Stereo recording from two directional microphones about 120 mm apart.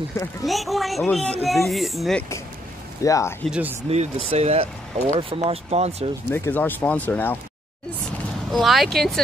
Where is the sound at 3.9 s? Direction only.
55° right (ahead or behind).